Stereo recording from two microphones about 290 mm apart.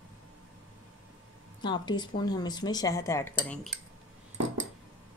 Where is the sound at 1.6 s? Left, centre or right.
Centre.